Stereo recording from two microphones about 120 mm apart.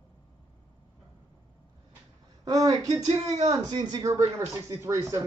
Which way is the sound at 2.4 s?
30° right (ahead or behind).